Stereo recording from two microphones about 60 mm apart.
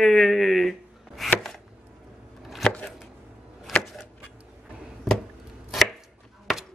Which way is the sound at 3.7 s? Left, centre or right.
Centre.